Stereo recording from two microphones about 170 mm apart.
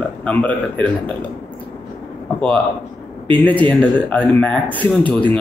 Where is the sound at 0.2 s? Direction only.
10° left (ahead or behind).